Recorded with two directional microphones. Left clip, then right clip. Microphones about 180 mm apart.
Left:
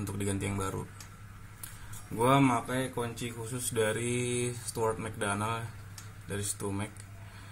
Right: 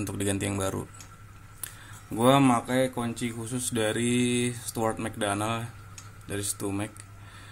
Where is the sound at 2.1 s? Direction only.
55° right (ahead or behind).